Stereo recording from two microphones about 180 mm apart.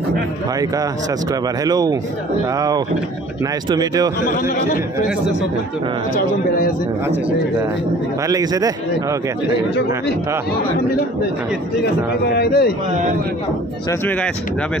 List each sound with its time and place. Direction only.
1.6 s a man's voice: 20° right (ahead or behind)
3.7 s a man's voice: 20° right (ahead or behind)
4.3 s a man's voice: 55° left (ahead or behind)
8.3 s a man's voice: 20° right (ahead or behind)
12.4 s a man's voice: 60° left (ahead or behind)